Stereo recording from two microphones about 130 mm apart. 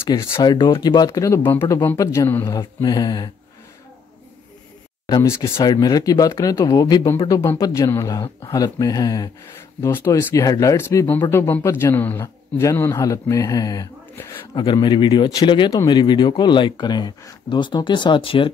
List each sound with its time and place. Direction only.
0.4 s speech: 35° left (ahead or behind); by 2.4 s 20° left (ahead or behind)
2.4 s speech: 30° left (ahead or behind)
5.2 s speech: 20° left (ahead or behind)
9.8 s speech: 20° left (ahead or behind); by 18.5 s 45° left (ahead or behind)